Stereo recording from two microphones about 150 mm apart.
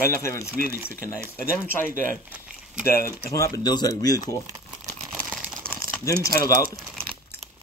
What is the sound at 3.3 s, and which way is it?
Speech, 20° left (ahead or behind).